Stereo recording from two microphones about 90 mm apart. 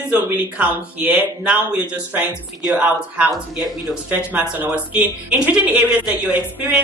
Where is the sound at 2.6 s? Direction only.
5° right (ahead or behind).